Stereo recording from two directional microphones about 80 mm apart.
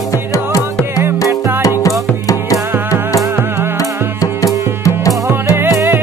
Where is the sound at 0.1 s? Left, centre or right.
Left.